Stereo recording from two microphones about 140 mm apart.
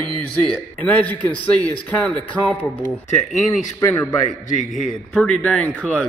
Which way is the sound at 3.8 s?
20° left (ahead or behind).